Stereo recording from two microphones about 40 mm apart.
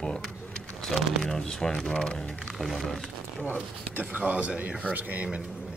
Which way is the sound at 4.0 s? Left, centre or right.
Right.